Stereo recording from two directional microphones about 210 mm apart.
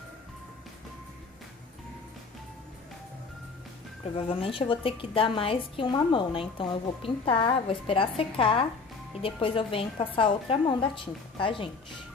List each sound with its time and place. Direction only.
4.3 s a woman's voice: 25° left (ahead or behind)